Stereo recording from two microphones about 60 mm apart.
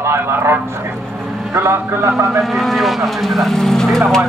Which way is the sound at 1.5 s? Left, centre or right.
Right.